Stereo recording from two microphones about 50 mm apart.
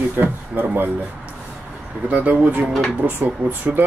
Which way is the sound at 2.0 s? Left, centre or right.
Right.